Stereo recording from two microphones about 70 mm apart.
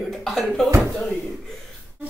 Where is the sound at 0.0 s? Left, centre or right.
Centre.